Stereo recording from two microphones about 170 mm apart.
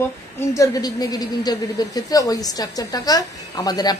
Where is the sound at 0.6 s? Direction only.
20° left (ahead or behind).